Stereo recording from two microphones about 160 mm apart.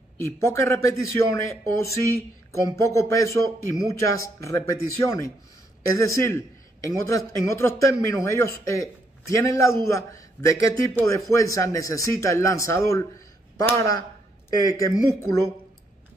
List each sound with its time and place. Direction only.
0.2 s a man's voice: 15° left (ahead or behind)